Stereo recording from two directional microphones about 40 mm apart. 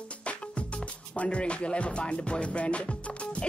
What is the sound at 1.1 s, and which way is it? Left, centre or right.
Music, left.